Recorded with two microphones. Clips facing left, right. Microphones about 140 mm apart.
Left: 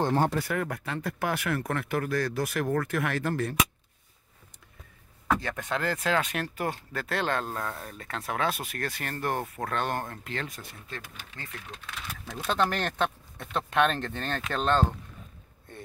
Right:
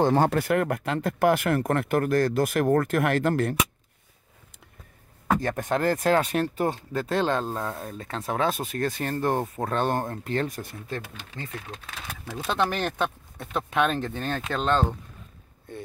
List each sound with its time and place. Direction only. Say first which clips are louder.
0.0 s speech: right 5 dB; 90° right; by 3.5 s 60° right (ahead or behind)
5.3 s speech: right 4 dB; 45° right (ahead or behind)
12.3 s speech: right 1 dB; 5° right (ahead or behind)